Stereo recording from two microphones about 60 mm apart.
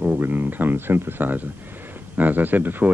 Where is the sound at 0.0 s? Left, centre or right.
Right.